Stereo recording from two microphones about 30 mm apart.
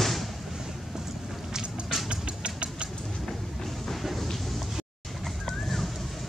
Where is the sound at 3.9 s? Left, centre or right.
Centre.